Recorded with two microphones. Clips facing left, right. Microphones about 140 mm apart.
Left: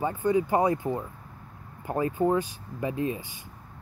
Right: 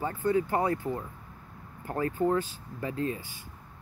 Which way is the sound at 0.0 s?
15° left (ahead or behind).